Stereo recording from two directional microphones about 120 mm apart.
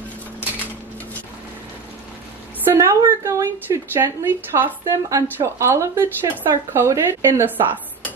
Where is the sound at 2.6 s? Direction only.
20° right (ahead or behind).